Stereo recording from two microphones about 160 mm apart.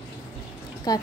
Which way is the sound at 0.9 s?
25° left (ahead or behind).